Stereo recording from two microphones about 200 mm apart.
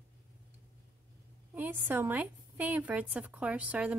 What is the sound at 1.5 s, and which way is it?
A woman's voice, 10° right (ahead or behind).